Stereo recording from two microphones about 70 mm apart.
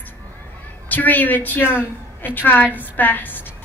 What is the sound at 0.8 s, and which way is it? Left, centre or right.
A woman's voice, left.